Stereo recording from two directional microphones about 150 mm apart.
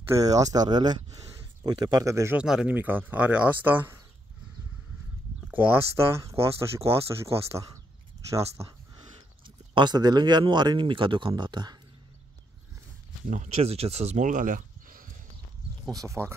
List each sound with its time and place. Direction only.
0.2 s speech: 25° right (ahead or behind)
2.3 s speech: 5° right (ahead or behind)
5.5 s speech: 10° right (ahead or behind)
9.8 s speech: 30° right (ahead or behind)
13.3 s speech: 50° right (ahead or behind); by 15.1 s 65° right (ahead or behind)
15.9 s speech: 20° right (ahead or behind)